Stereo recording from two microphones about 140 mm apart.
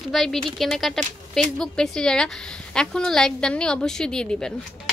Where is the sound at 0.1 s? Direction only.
Centre (ahead or behind).